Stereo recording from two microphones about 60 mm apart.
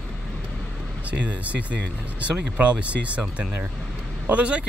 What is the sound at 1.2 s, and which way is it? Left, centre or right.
Speech, right.